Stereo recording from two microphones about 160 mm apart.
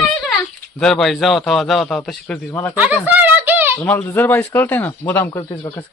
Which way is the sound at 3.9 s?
10° left (ahead or behind).